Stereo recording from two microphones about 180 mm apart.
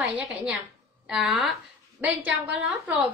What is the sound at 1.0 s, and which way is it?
A woman's voice, centre (ahead or behind).